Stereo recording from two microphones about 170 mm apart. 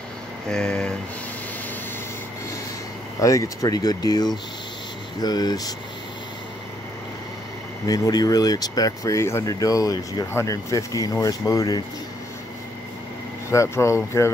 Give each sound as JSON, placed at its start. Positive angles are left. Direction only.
{"t": 0.5, "sound": "a sound", "side_deg": 5}
{"t": 3.2, "sound": "speech", "side_deg": 20}
{"t": 7.8, "sound": "speech", "side_deg": 20}
{"t": 13.5, "sound": "speech", "side_deg": 15}